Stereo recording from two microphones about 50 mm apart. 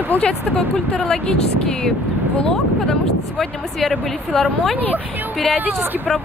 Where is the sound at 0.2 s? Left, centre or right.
Centre.